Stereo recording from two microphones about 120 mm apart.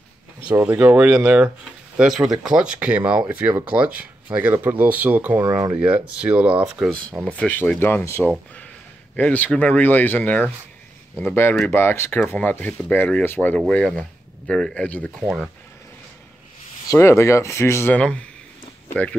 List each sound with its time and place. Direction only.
0.6 s speech: 15° right (ahead or behind)
5.4 s speech: 25° right (ahead or behind)
5.8 s speech: 10° right (ahead or behind)
6.9 s speech: 10° left (ahead or behind)
15.2 s speech: 5° right (ahead or behind)
16.9 s speech: 25° left (ahead or behind)
17.9 s speech: 10° left (ahead or behind)